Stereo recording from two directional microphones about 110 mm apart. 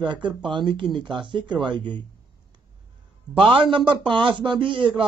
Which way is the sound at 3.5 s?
50° right (ahead or behind).